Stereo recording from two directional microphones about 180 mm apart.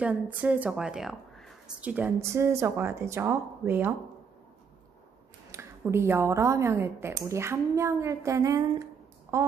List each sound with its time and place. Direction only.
0.0 s speech: 10° right (ahead or behind)
5.5 s speech: 15° right (ahead or behind)